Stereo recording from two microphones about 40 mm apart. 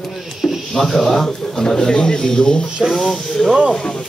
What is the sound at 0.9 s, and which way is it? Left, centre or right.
Speech, centre.